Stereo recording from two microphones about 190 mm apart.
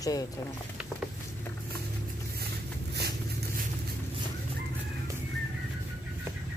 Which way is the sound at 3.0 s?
55° right (ahead or behind).